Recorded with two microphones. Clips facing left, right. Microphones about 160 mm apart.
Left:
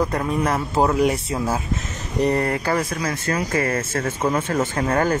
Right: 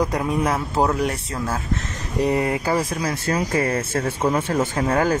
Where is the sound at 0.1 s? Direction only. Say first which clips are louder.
Even; 5° right (ahead or behind).